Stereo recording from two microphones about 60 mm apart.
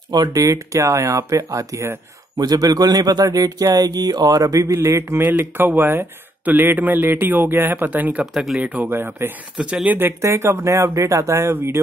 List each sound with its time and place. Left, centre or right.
0.3 s speech: right
2.3 s speech: right
4.7 s a man's voice: right
5.2 s speech: right
8.3 s speech: centre
8.5 s speech: right
10.2 s speech: right